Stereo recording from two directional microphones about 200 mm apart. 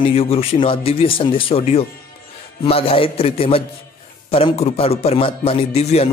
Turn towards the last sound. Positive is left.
turn(degrees=30)  # may be behind; listen again after turning